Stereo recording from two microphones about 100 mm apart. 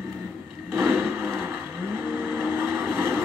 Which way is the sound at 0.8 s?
5° right (ahead or behind).